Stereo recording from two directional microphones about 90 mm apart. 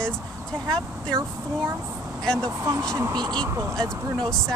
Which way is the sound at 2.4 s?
40° right (ahead or behind).